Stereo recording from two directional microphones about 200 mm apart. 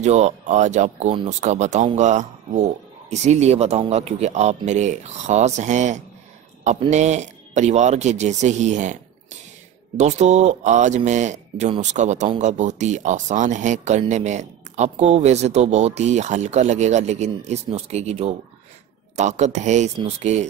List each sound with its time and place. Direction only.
0.0 s speech: 35° right (ahead or behind)
9.9 s speech: 35° right (ahead or behind)